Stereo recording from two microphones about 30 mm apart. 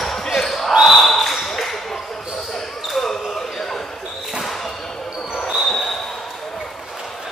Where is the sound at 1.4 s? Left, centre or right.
Centre.